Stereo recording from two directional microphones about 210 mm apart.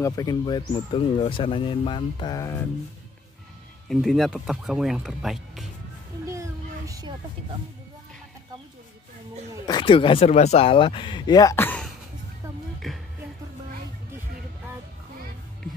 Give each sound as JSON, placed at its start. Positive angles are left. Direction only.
{"t": 0.0, "sound": "speech", "side_deg": 15}
{"t": 3.9, "sound": "speech", "side_deg": 0}
{"t": 6.9, "sound": "a sound", "side_deg": -20}
{"t": 9.7, "sound": "speech", "side_deg": 25}
{"t": 12.8, "sound": "music", "side_deg": 0}